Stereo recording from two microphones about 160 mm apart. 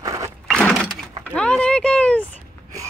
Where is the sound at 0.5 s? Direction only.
5° left (ahead or behind).